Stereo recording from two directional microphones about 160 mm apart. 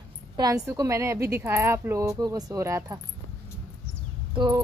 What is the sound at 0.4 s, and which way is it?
A woman's voice, 20° right (ahead or behind).